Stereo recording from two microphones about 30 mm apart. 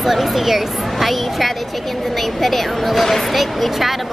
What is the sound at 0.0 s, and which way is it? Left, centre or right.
Speech, centre.